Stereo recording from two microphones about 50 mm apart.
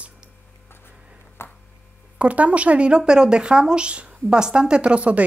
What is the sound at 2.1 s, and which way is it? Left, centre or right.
A woman's voice, right.